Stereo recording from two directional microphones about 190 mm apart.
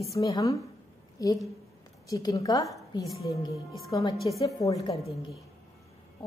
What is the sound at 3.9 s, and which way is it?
A woman's voice, 20° left (ahead or behind).